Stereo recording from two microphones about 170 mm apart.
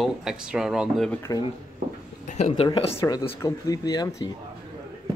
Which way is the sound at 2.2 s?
40° left (ahead or behind).